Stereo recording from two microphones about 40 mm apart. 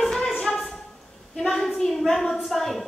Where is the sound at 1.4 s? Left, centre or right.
Centre.